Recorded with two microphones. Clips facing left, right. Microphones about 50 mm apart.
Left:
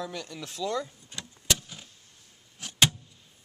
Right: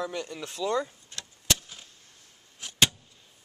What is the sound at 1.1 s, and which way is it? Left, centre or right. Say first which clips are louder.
Vehicle: left 1 dB; centre.